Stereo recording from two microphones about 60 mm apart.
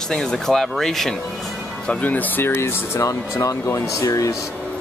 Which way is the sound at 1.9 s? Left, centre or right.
Left.